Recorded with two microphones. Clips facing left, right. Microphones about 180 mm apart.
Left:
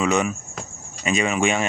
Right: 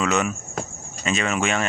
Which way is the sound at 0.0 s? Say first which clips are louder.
Left 2 dB; 10° left (ahead or behind).